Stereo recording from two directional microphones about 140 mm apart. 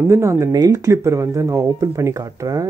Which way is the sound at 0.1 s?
20° right (ahead or behind).